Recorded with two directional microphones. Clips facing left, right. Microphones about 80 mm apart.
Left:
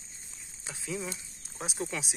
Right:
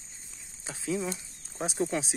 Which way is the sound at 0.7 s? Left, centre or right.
Right.